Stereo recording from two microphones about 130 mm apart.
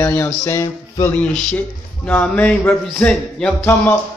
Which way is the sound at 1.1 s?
10° left (ahead or behind).